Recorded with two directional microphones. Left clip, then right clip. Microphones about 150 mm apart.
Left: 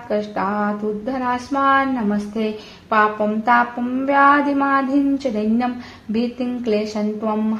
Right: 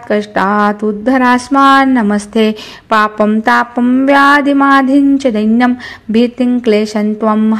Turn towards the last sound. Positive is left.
turn(degrees=-45)  # may be behind; listen again after turning